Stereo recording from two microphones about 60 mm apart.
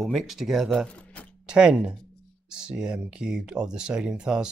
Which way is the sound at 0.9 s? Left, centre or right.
Left.